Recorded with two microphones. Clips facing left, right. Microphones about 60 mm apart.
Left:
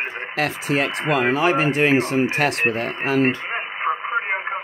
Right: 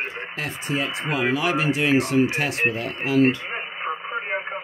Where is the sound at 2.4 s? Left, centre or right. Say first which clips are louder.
Left 4 dB; left.